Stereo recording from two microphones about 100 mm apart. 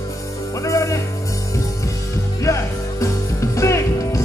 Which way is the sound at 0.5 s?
30° left (ahead or behind).